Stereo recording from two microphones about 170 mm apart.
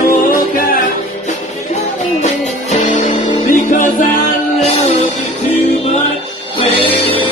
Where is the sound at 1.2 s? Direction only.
40° left (ahead or behind).